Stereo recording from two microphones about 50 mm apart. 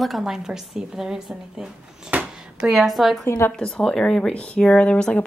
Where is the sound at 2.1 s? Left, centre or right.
Right.